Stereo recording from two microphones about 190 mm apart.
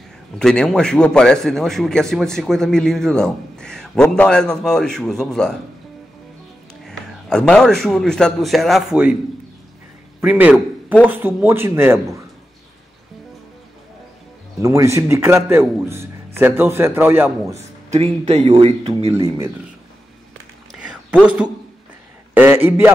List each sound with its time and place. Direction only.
0.4 s a man's voice: 5° left (ahead or behind)
6.9 s a man's voice: 5° left (ahead or behind)
10.2 s a man's voice: 5° right (ahead or behind)
14.6 s a man's voice: 15° right (ahead or behind)
17.6 s speech: 35° right (ahead or behind)
19.1 s a man's voice: 15° right (ahead or behind)
20.7 s a sound: 5° right (ahead or behind)
22.3 s a man's voice: 10° right (ahead or behind)